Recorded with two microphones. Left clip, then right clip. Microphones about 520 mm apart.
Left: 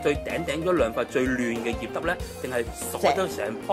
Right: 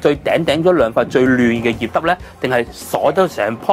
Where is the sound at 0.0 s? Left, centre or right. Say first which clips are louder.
Right 12 dB; right.